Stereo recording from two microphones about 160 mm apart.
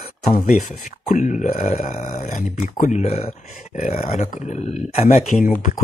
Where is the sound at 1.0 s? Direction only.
55° left (ahead or behind).